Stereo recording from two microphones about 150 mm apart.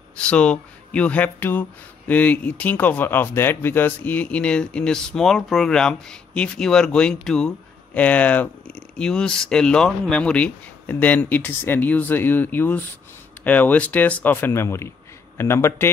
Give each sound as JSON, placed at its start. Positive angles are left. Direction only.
{"t": 0.2, "sound": "speech", "side_deg": 5}